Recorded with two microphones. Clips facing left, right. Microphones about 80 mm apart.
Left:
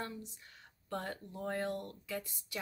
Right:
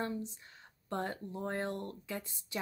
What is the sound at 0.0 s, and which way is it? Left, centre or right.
Speech, right.